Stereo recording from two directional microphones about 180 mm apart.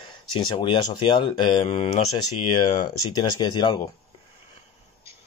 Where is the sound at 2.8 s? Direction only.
20° left (ahead or behind).